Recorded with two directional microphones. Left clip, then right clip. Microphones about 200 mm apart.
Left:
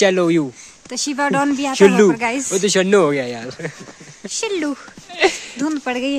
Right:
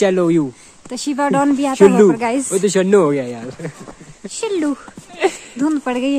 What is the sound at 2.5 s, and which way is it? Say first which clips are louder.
Speech: right 1 dB; 30° left (ahead or behind).